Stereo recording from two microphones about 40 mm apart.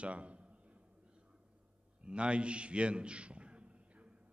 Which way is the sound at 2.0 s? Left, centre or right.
Right.